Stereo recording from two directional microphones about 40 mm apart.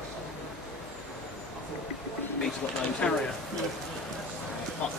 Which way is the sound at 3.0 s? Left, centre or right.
Left.